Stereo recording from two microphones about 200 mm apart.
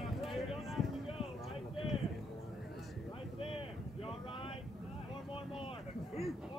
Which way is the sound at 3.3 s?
30° left (ahead or behind).